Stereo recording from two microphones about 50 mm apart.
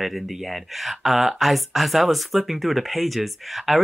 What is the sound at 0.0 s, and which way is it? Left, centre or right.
Speech, centre.